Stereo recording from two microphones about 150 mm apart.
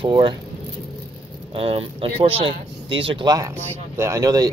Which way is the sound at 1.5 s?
40° right (ahead or behind).